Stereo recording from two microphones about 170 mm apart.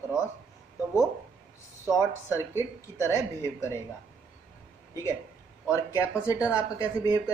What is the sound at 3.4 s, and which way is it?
Speech, 15° left (ahead or behind).